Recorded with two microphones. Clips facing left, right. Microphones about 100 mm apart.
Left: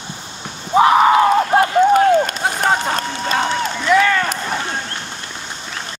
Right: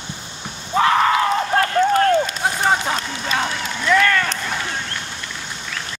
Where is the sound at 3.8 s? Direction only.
10° left (ahead or behind).